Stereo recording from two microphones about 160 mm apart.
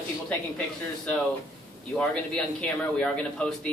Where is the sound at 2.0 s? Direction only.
Centre (ahead or behind).